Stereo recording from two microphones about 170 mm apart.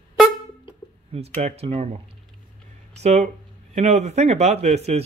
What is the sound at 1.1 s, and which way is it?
Speech, 35° right (ahead or behind).